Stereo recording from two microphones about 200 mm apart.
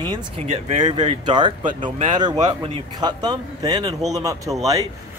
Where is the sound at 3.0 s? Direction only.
20° right (ahead or behind).